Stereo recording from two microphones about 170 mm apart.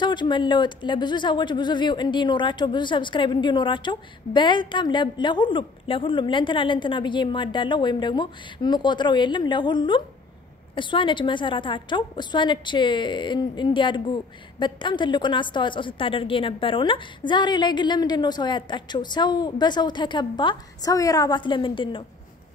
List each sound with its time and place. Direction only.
0.0 s speech: 25° left (ahead or behind)